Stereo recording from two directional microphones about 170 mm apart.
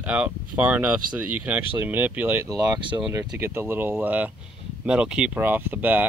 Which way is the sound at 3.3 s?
15° right (ahead or behind).